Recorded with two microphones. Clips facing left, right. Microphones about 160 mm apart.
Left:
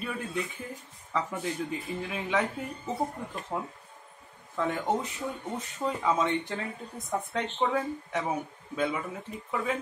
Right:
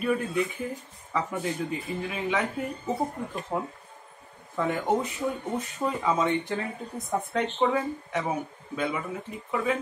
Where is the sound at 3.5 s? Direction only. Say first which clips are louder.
Right 3 dB; 10° right (ahead or behind).